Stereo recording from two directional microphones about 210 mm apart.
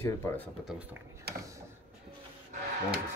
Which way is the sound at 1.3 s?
50° right (ahead or behind).